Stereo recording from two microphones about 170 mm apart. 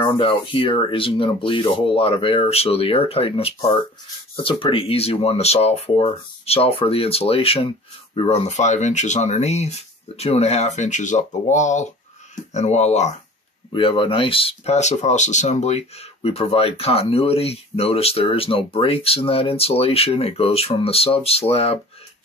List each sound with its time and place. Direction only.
0.0 s speech: 30° left (ahead or behind)
13.7 s speech: 30° left (ahead or behind)